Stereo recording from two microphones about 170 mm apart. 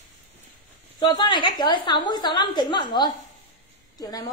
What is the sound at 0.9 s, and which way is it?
A woman's voice, 25° left (ahead or behind).